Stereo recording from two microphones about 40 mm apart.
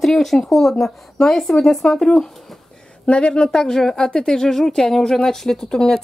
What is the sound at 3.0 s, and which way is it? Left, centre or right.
Speech, left.